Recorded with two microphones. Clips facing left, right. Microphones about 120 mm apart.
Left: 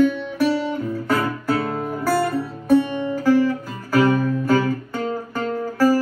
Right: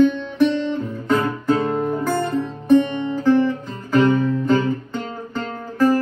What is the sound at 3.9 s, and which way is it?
Music, 10° left (ahead or behind).